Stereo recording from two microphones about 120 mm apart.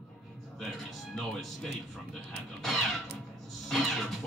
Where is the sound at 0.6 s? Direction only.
Centre (ahead or behind).